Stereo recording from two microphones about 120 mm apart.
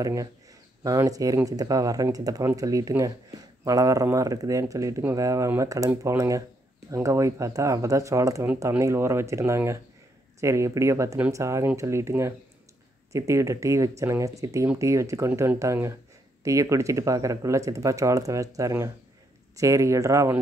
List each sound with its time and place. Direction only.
0.0 s speech: 30° right (ahead or behind)